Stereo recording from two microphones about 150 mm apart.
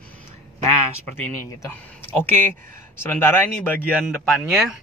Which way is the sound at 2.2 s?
15° left (ahead or behind).